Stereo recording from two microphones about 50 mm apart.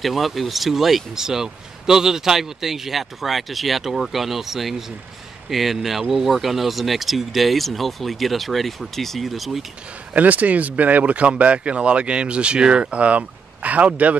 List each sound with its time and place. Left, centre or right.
0.0 s speech: centre
10.1 s speech: right